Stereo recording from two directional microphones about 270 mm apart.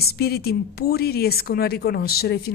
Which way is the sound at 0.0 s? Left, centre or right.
Left.